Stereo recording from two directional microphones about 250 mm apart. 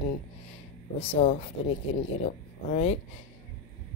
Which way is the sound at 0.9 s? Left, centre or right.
Left.